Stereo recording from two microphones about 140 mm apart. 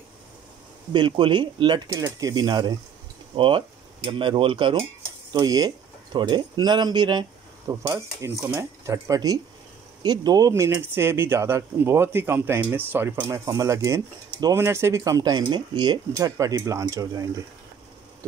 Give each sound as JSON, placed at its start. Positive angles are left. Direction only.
{"t": 0.9, "sound": "speech", "side_deg": -35}